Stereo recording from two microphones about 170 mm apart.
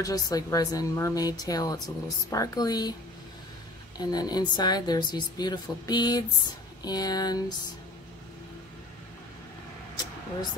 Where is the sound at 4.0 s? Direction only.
25° left (ahead or behind).